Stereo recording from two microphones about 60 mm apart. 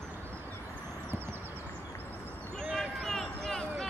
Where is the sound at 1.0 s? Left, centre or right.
Right.